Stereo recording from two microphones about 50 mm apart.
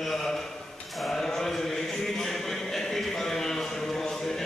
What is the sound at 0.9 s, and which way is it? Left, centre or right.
Chant, centre.